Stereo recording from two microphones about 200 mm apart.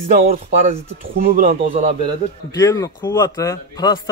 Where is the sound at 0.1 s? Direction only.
35° right (ahead or behind).